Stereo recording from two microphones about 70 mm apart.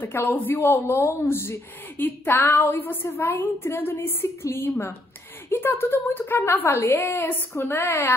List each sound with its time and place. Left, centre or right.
0.0 s a woman's voice: left